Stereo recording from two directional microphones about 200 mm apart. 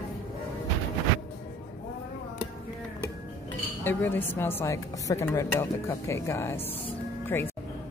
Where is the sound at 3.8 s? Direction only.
10° left (ahead or behind).